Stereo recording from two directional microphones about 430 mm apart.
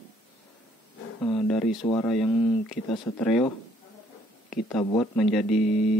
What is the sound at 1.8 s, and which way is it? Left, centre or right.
Speech, centre.